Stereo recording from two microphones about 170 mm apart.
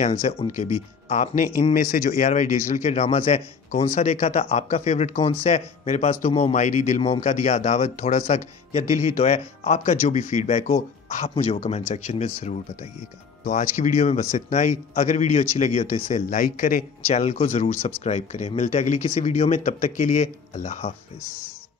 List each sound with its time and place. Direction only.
0.0 s speech: 35° left (ahead or behind)
13.4 s speech: 45° left (ahead or behind)